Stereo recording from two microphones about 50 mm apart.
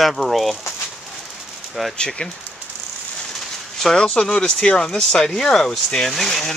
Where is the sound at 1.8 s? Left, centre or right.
Centre.